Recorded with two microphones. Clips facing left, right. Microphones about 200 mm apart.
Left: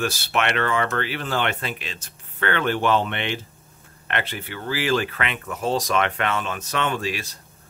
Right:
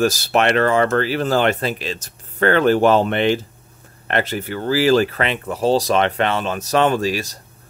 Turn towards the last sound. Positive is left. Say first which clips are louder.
# right 7 dB
turn(degrees=-40)  # may be behind; listen again after turning